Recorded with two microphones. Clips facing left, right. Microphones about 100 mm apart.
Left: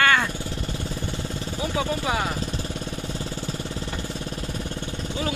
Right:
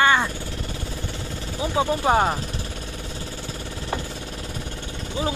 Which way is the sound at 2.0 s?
40° right (ahead or behind).